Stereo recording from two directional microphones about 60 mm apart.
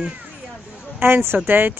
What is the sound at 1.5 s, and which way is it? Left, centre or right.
Speech, right.